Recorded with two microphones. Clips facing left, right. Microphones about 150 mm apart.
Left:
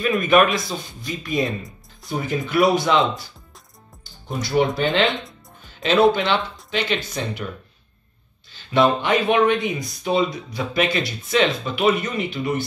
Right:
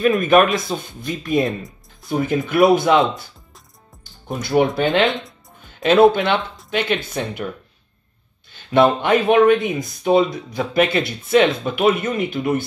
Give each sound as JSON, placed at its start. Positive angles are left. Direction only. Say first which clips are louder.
{"t": 0.2, "sound": "speech", "louder": "right 2 dB", "side_deg": -45}
{"t": 4.0, "sound": "music", "louder": "right 1 dB", "side_deg": -50}
{"t": 5.0, "sound": "speech", "louder": "right 2 dB", "side_deg": 0}
{"t": 5.6, "sound": "speech", "louder": "right 4 dB", "side_deg": -50}
{"t": 8.5, "sound": "speech", "louder": "right 3 dB", "side_deg": -55}